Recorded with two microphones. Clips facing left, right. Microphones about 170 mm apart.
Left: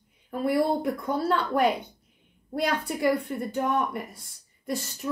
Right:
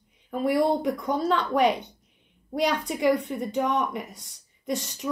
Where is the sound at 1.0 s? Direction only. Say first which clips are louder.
Even; 5° left (ahead or behind).